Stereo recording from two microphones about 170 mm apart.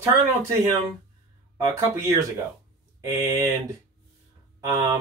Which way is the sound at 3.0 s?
15° right (ahead or behind).